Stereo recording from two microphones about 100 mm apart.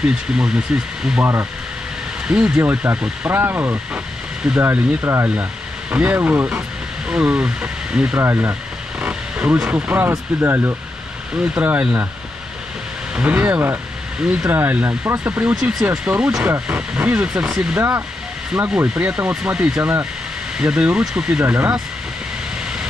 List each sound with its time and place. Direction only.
0.0 s speech: 10° right (ahead or behind)
1.2 s speech: 25° right (ahead or behind)
2.2 s speech: 10° right (ahead or behind)
8.2 s speech: 25° right (ahead or behind)
9.0 s speech: 15° right (ahead or behind)
13.1 s speech: 15° right (ahead or behind)
15.5 s speech: 5° right (ahead or behind)
17.7 s speech: 25° right (ahead or behind)
21.5 s speech: 20° right (ahead or behind)